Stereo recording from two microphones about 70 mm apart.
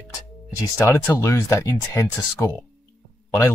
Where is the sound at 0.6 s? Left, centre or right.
Left.